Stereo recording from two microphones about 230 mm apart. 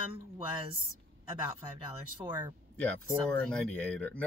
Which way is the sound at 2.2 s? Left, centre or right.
Centre.